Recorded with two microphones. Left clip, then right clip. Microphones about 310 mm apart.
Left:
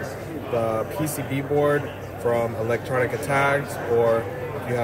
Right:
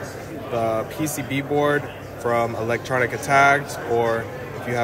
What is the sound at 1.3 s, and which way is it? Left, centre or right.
Speech, centre.